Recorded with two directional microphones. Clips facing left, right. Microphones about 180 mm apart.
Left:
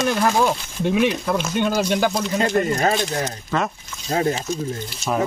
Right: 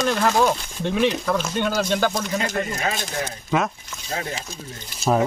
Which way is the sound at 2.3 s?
40° left (ahead or behind).